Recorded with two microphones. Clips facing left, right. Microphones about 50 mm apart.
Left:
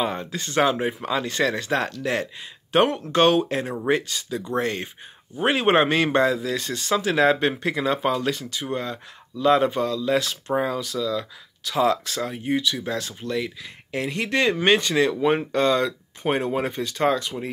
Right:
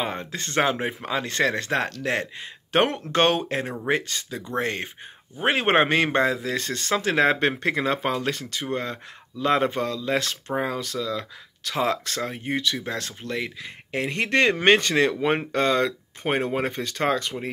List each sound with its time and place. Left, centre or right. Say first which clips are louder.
0.0 s speech: left 3 dB; right
1.2 s speech: even; right
6.6 s speech: left 1 dB; right